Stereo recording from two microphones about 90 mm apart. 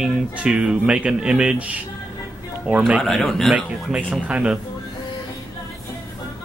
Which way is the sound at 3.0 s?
5° left (ahead or behind).